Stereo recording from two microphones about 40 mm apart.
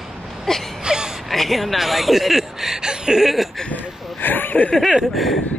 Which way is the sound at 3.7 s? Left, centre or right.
Left.